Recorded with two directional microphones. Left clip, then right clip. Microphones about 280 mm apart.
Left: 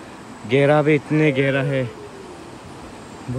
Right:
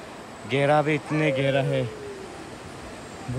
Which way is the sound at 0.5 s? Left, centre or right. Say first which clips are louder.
Left 6 dB; centre.